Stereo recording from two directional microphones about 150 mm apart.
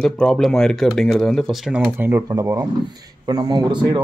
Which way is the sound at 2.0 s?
15° right (ahead or behind).